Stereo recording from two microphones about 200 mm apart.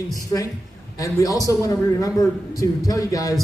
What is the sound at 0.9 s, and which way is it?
A man's voice, 15° left (ahead or behind).